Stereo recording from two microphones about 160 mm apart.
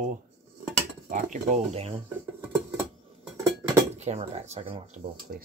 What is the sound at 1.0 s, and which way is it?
Speech, 50° right (ahead or behind).